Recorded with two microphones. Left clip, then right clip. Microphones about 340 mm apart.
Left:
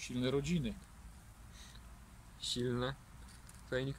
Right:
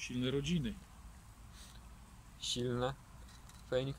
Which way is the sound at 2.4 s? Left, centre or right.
Centre.